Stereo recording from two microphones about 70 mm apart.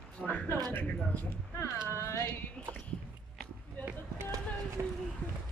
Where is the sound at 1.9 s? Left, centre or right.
Left.